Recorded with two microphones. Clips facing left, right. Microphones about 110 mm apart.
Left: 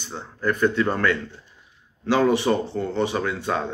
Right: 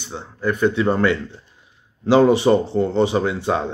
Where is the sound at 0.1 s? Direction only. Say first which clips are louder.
Right 2 dB; 10° right (ahead or behind).